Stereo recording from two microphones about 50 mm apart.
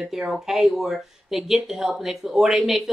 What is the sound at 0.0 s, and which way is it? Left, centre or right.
A woman's voice, centre.